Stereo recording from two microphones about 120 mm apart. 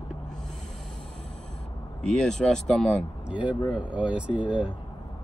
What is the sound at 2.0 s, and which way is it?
Speech, 5° left (ahead or behind).